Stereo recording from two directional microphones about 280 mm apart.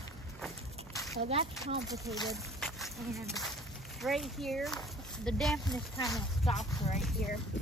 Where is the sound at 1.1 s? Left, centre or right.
Right.